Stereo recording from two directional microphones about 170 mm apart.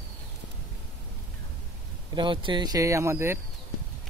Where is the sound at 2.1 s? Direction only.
30° right (ahead or behind).